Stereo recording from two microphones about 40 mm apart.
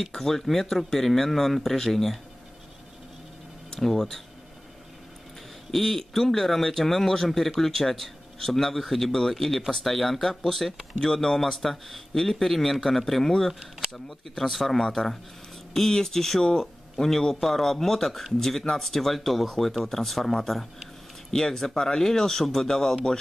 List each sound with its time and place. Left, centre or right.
0.1 s speech: centre
3.7 s speech: centre
5.7 s a man's voice: centre
13.6 s speech: right
13.9 s speech: centre
14.5 s a man's voice: centre